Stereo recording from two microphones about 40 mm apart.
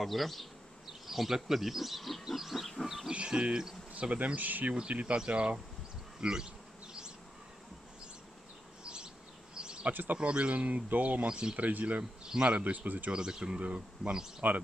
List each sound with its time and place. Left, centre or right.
0.0 s speech: centre
3.1 s speech: right
4.4 s speech: right
5.0 s speech: right
8.8 s bird: right
9.8 s speech: right
10.2 s speech: right
11.5 s speech: right
12.0 s speech: centre
12.4 s speech: right
13.1 s speech: centre
14.4 s speech: right